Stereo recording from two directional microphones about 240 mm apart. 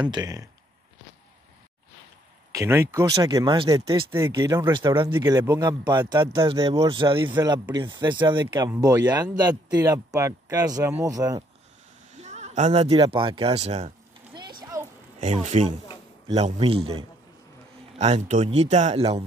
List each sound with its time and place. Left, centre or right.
0.0 s speech: centre
2.5 s speech: centre
12.2 s a sound: right
15.1 s speech: right